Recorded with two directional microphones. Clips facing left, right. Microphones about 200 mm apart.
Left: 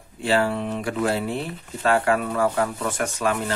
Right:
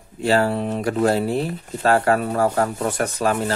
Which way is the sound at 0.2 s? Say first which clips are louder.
Right 3 dB; 40° right (ahead or behind).